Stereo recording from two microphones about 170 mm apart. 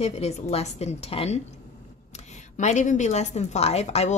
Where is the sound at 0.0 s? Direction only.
40° left (ahead or behind).